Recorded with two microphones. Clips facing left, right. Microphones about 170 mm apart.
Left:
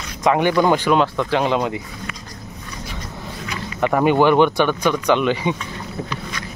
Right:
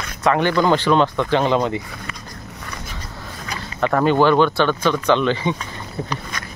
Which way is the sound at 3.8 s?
15° left (ahead or behind).